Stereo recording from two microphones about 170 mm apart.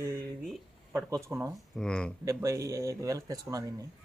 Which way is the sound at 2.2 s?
20° right (ahead or behind).